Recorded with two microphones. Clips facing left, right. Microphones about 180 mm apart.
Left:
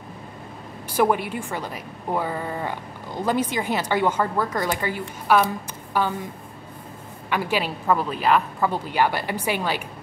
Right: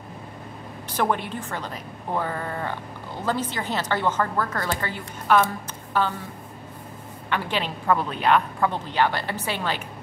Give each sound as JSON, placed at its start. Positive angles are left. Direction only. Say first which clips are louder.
{"t": 0.8, "sound": "a woman's voice", "louder": "left 4 dB", "side_deg": 10}
{"t": 7.2, "sound": "a woman's voice", "louder": "left 3 dB", "side_deg": 10}